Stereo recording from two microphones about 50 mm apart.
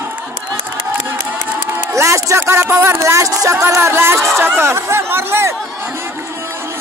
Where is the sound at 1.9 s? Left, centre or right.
Right.